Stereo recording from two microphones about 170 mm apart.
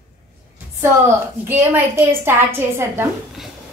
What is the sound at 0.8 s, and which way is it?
A woman's voice, 15° right (ahead or behind).